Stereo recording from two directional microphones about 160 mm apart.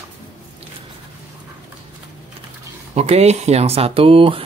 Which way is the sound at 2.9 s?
40° right (ahead or behind).